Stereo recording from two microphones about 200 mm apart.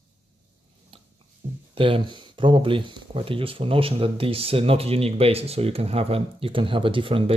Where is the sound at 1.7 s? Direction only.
25° right (ahead or behind).